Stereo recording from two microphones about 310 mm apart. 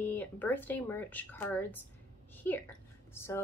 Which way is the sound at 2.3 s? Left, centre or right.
Centre.